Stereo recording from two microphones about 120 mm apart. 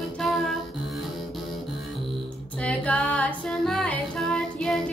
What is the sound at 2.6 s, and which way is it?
Music, 10° left (ahead or behind).